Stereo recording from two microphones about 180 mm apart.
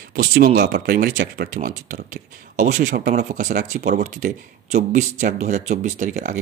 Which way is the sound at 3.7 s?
55° right (ahead or behind).